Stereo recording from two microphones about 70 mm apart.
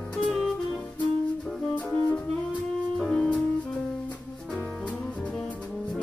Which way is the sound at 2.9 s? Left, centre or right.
Centre.